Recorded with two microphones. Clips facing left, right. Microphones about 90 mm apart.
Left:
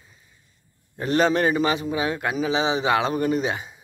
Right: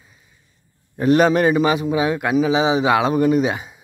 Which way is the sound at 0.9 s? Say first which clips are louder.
Right 6 dB; 15° right (ahead or behind).